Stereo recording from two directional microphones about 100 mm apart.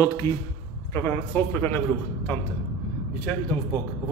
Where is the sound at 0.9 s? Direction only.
20° left (ahead or behind).